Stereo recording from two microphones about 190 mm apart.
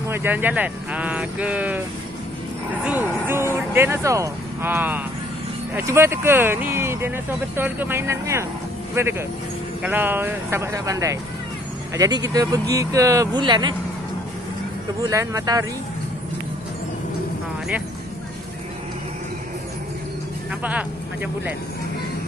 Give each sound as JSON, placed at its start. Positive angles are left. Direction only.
{"t": 0.1, "sound": "speech", "side_deg": -10}
{"t": 2.8, "sound": "speech", "side_deg": -10}
{"t": 15.0, "sound": "speech", "side_deg": -15}
{"t": 20.6, "sound": "speech", "side_deg": -10}